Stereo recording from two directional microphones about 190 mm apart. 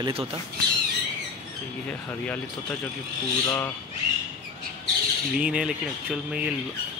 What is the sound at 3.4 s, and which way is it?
Speech, 10° left (ahead or behind).